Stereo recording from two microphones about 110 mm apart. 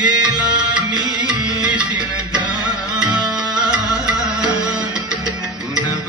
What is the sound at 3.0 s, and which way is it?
Music, 10° right (ahead or behind).